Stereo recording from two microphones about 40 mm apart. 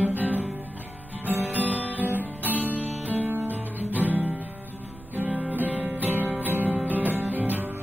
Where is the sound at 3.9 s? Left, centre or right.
Right.